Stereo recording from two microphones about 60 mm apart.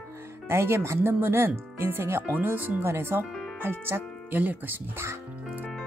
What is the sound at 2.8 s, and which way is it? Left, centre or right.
Speech, right.